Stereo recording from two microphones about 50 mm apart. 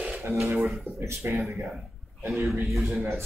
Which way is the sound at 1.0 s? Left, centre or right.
Right.